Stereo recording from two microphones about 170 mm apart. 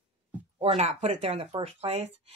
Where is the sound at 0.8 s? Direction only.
40° right (ahead or behind).